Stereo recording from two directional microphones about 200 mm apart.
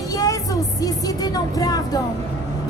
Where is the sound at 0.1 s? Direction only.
15° left (ahead or behind).